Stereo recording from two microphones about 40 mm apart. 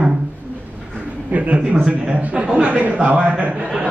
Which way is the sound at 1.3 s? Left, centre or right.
Right.